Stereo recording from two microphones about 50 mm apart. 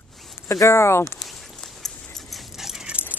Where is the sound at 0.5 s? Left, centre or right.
Left.